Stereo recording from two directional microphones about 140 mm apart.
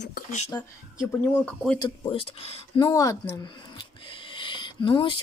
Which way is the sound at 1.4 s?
5° left (ahead or behind).